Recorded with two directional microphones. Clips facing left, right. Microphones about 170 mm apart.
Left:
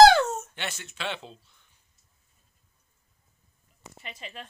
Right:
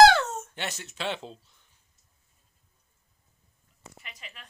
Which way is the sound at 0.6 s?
40° right (ahead or behind).